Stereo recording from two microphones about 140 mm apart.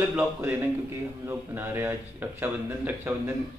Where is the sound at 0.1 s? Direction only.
10° right (ahead or behind).